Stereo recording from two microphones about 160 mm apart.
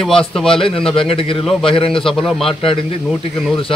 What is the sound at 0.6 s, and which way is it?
A man's voice, 35° left (ahead or behind).